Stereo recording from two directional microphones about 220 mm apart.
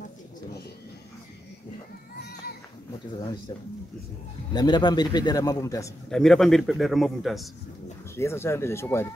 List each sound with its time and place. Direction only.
3.2 s a man's voice: 20° left (ahead or behind)
6.0 s a man's voice: centre (ahead or behind)
8.2 s speech: 10° left (ahead or behind)